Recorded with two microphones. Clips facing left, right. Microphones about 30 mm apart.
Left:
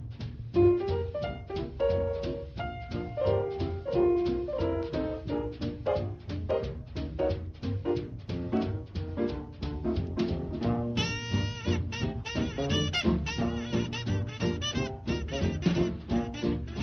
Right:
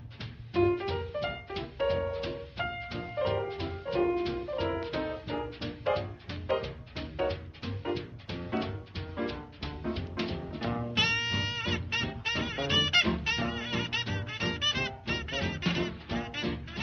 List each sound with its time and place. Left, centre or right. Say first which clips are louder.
0.6 s music: left 4 dB; right